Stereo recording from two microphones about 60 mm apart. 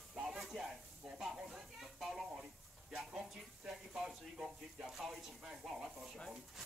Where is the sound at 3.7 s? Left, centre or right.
Centre.